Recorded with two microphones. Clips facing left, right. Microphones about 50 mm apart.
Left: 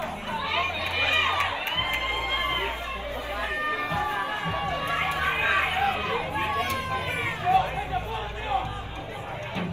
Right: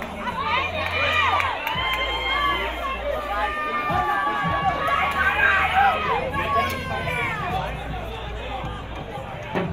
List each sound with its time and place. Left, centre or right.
0.4 s crowd: right